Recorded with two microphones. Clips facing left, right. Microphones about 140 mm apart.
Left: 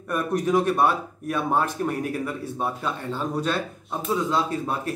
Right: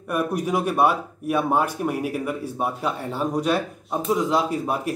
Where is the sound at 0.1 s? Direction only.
10° right (ahead or behind).